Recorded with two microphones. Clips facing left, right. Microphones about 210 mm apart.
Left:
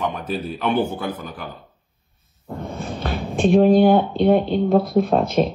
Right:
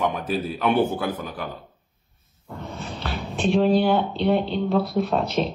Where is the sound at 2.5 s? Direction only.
50° left (ahead or behind).